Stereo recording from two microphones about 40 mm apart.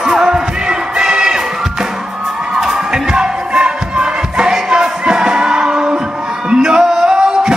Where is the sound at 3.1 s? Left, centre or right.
Right.